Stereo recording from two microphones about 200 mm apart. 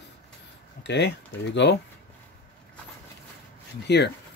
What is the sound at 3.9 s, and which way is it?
Speech, 55° left (ahead or behind).